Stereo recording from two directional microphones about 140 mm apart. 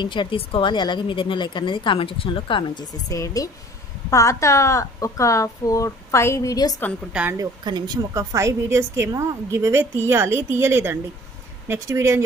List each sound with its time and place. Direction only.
0.0 s a woman's voice: 35° left (ahead or behind)
7.3 s a woman's voice: 30° right (ahead or behind)